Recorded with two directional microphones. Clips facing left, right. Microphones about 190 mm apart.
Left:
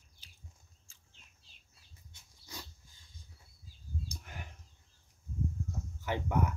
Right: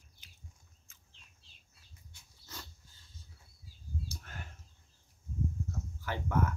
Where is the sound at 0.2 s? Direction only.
35° left (ahead or behind).